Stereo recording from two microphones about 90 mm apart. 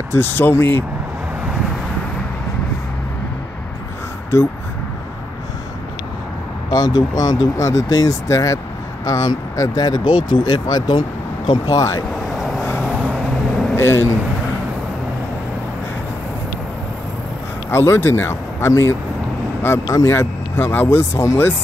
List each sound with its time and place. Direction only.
0.1 s speech: 25° left (ahead or behind)
6.7 s speech: 45° left (ahead or behind); by 11.8 s 60° left (ahead or behind)
13.1 s vehicle: 5° left (ahead or behind)
13.7 s speech: 25° left (ahead or behind)
17.6 s speech: 30° left (ahead or behind)